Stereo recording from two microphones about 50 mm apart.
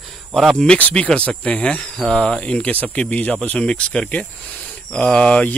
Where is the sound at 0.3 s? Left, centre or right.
Centre.